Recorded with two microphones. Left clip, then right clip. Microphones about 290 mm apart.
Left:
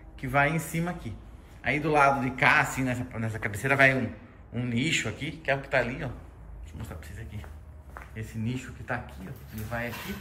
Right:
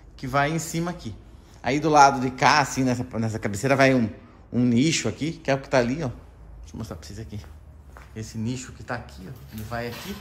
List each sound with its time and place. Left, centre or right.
0.2 s a man's voice: centre
8.3 s a man's voice: centre